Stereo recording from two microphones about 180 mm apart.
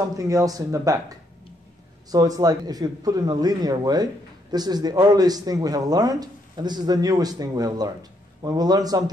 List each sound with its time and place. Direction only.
0.2 s a man's voice: 20° right (ahead or behind)